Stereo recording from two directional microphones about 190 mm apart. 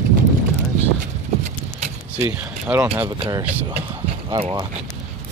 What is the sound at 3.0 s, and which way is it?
Speech, 25° right (ahead or behind).